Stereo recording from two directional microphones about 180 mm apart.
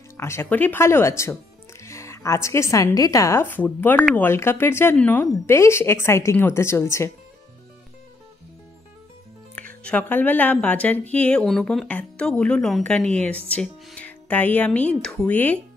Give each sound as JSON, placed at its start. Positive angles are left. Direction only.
{"t": 0.2, "sound": "a woman's voice", "side_deg": 15}
{"t": 9.8, "sound": "speech", "side_deg": 10}